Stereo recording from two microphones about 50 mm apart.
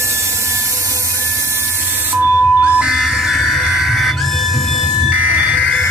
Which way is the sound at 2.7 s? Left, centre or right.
Centre.